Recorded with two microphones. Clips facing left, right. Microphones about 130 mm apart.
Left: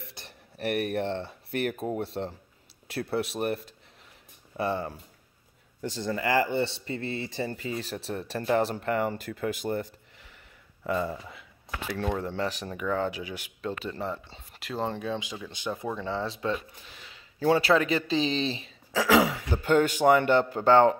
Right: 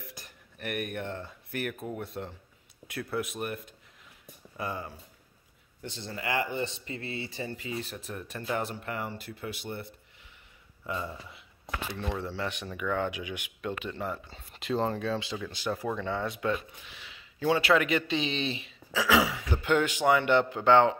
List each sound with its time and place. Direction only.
0.0 s a sound: 30° left (ahead or behind)
1.5 s speech: 25° left (ahead or behind); by 9.8 s 40° left (ahead or behind)
10.9 s speech: 40° left (ahead or behind)
14.6 s speech: 5° left (ahead or behind)
14.9 s speech: 15° left (ahead or behind)
16.9 s speech: 40° left (ahead or behind)